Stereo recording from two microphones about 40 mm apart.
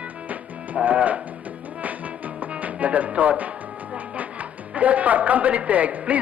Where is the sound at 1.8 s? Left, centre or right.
Right.